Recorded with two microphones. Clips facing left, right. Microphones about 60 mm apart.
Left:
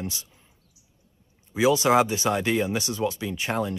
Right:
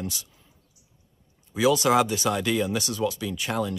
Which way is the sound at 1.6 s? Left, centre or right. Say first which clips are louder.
Left 1 dB; left.